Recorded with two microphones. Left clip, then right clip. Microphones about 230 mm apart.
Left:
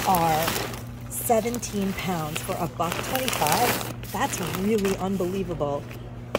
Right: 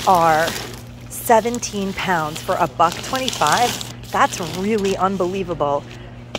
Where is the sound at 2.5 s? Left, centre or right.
Centre.